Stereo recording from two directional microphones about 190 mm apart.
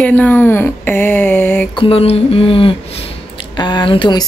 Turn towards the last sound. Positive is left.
turn(degrees=25)  # may be behind; listen again after turning